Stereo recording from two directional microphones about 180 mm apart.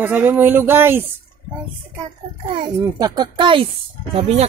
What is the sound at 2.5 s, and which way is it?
Speech, 30° right (ahead or behind).